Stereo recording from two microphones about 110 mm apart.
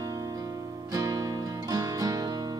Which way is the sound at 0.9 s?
30° right (ahead or behind).